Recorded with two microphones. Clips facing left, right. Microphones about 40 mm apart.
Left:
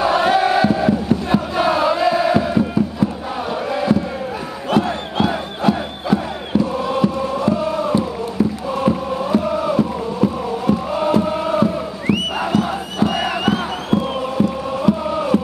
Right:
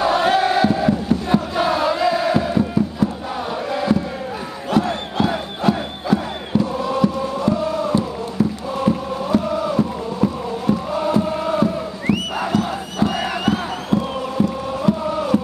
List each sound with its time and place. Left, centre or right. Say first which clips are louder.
0.0 s crowd: left 1 dB; centre
3.7 s a sound: left 1 dB; centre
4.6 s crowd: left 1 dB; left
5.6 s chant: left 2 dB; left
12.5 s battle cry: left 2 dB; left
13.0 s crowd: left 2 dB; left
13.5 s music: even; left
15.0 s chant: left 1 dB; left